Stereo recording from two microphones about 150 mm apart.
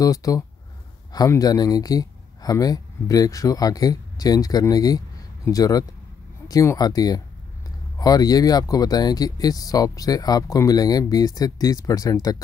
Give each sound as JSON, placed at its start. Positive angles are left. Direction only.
{"t": 0.0, "sound": "speech", "side_deg": 25}